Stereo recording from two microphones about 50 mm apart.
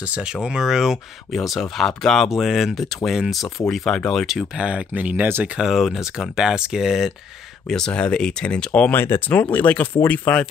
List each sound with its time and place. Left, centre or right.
0.0 s speech: right; by 2.2 s centre
2.2 s speech: centre
3.9 s speech: centre
4.6 s speech: right
4.9 s speech: right
5.6 s speech: centre
7.6 s speech: centre
8.9 s speech: left